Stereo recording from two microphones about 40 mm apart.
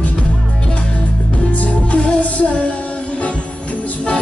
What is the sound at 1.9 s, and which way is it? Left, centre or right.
Music, left.